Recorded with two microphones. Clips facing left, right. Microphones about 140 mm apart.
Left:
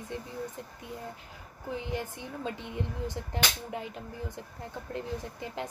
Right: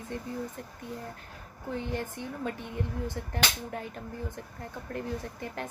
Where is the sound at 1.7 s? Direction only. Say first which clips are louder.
Right 1 dB; 15° left (ahead or behind).